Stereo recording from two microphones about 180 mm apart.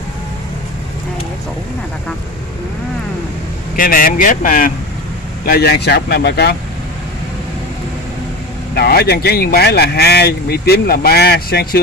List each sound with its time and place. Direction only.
3.7 s speech: 50° left (ahead or behind)
5.4 s speech: 60° left (ahead or behind)
8.7 s speech: 60° left (ahead or behind)